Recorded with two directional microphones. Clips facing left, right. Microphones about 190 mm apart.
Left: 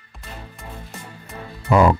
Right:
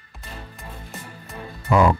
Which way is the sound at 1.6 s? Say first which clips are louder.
Left 2 dB; 40° left (ahead or behind).